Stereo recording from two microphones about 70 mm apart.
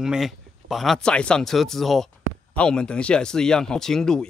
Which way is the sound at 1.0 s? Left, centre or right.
Centre.